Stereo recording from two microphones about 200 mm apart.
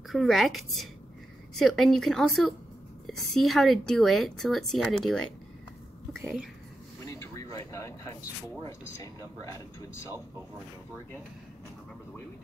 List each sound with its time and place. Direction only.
0.1 s speech: centre (ahead or behind)
7.1 s a sound: 15° left (ahead or behind)
8.6 s speech: 15° left (ahead or behind)